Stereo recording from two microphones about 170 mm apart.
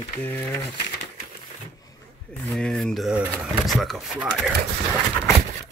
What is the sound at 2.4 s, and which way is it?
Speech, 5° left (ahead or behind).